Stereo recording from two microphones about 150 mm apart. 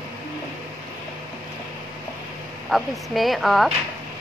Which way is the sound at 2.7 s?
Centre (ahead or behind).